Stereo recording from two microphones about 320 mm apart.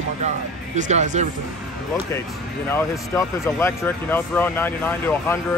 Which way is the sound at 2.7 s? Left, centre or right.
Centre.